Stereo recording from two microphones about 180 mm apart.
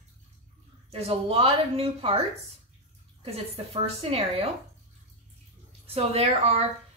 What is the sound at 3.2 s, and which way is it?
A woman's voice, 35° right (ahead or behind).